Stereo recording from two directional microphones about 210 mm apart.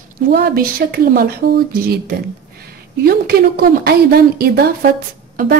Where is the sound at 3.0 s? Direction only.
45° right (ahead or behind).